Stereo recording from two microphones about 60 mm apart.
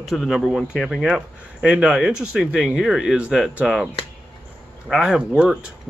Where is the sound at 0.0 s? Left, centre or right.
Centre.